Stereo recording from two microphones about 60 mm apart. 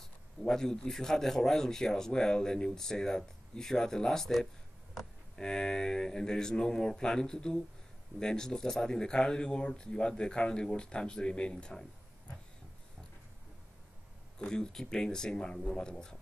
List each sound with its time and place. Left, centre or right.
0.4 s a man's voice: centre
14.4 s a man's voice: centre